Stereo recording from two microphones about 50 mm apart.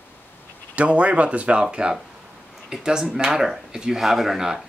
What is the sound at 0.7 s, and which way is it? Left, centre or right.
Speech, right.